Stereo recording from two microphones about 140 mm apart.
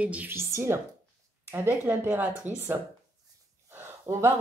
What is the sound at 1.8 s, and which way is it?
Speech, 15° right (ahead or behind).